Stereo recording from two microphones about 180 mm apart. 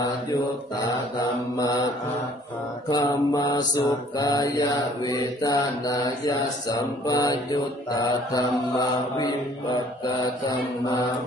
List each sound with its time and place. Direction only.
1.2 s mantra: 20° left (ahead or behind)
2.9 s mantra: 25° left (ahead or behind)